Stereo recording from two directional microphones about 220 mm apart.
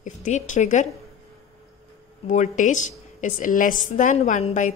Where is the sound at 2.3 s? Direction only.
35° left (ahead or behind).